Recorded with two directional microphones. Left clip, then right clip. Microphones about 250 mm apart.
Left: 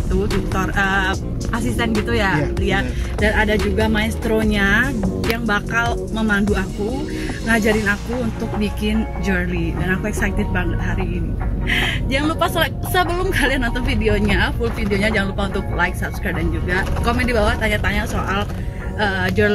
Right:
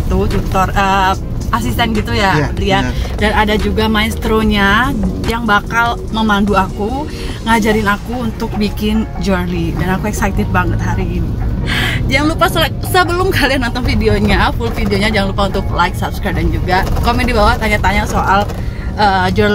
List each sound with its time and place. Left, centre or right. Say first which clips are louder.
0.3 s speech: right 7 dB; centre
2.0 s speech: right 5 dB; centre
9.8 s speech: right 4 dB; centre
11.9 s speech: right 6 dB; centre